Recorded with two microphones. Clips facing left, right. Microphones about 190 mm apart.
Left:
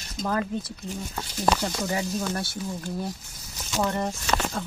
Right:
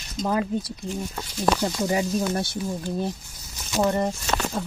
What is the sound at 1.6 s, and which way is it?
Speech, 20° right (ahead or behind).